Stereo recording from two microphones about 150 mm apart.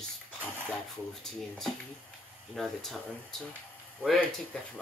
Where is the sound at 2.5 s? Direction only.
Centre (ahead or behind).